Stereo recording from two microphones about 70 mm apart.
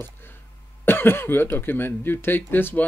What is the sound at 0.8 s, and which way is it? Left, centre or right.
Speech, left.